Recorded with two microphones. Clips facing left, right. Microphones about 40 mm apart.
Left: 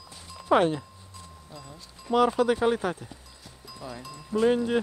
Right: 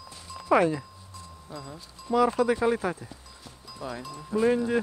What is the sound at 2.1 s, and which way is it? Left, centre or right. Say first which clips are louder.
Speech: left 1 dB; left.